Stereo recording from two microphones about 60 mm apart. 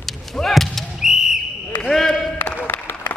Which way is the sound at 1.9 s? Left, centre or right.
Centre.